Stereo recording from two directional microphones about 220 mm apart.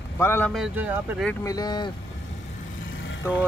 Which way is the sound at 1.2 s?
10° left (ahead or behind).